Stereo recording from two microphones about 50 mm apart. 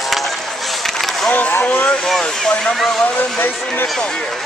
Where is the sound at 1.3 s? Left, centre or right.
Left.